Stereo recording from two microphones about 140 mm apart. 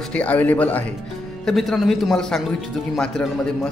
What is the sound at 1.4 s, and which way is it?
A man's voice, centre (ahead or behind).